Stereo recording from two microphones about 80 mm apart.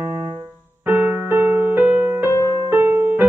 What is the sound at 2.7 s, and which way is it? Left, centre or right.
Music, right.